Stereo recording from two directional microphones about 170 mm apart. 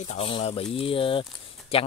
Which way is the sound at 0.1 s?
35° left (ahead or behind).